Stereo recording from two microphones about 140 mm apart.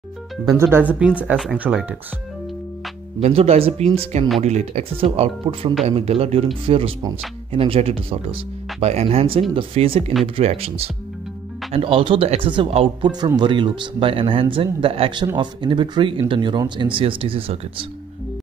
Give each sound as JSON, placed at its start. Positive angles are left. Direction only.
{"t": 0.5, "sound": "speech", "side_deg": -15}
{"t": 3.2, "sound": "speech", "side_deg": -50}